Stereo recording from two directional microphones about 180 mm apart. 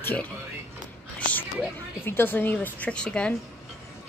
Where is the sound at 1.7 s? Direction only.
10° left (ahead or behind).